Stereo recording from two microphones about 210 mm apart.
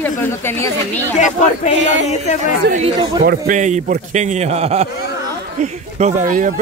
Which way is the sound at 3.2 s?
45° right (ahead or behind).